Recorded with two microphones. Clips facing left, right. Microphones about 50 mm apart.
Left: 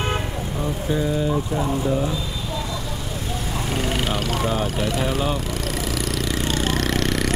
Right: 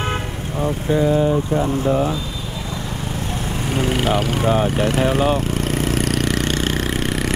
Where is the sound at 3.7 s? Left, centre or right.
Centre.